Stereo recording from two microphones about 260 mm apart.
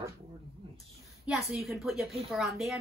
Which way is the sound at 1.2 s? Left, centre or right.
Centre.